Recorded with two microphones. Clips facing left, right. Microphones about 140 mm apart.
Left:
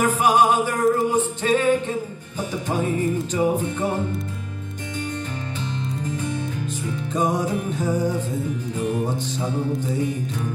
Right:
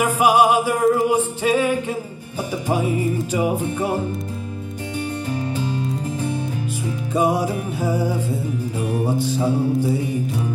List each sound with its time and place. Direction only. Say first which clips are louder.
0.0 s music: right 2 dB; 10° right (ahead or behind)
5.6 s music: right 4 dB; 10° right (ahead or behind)